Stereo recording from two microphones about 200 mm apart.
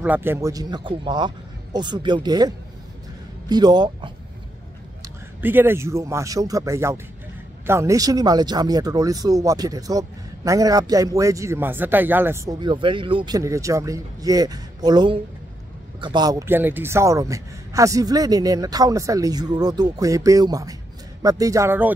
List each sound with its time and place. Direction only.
0.0 s a man's voice: 10° right (ahead or behind)
5.0 s a man's voice: 10° right (ahead or behind)